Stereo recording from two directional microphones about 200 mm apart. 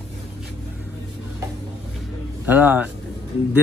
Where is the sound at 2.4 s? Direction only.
10° right (ahead or behind).